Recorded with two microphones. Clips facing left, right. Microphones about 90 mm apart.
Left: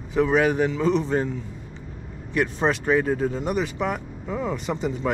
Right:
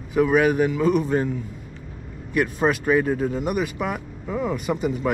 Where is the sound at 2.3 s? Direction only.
30° left (ahead or behind).